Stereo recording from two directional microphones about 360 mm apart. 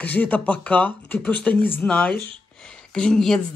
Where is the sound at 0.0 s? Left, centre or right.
Centre.